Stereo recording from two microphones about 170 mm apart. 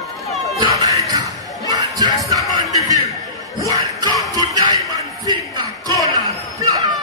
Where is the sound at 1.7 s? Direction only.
20° right (ahead or behind).